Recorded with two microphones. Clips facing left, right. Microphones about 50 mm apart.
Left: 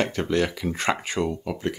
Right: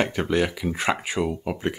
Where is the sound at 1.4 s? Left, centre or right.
Centre.